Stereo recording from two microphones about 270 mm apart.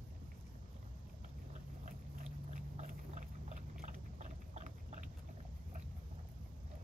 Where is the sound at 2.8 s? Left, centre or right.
Right.